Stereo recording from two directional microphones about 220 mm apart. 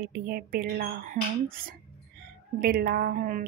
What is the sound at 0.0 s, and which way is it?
Speech, 45° right (ahead or behind).